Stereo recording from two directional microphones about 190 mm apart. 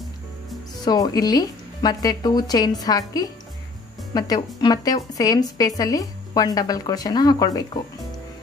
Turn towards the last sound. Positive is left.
turn(degrees=20)  # may be behind; listen again after turning